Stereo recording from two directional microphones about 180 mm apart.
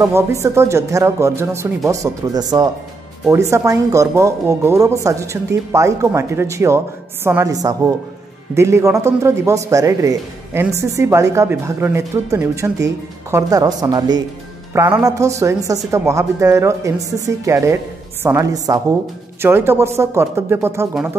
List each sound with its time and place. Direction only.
0.0 s speech: 15° right (ahead or behind)